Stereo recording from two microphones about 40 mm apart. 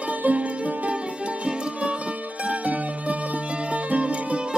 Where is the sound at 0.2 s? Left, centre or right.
Right.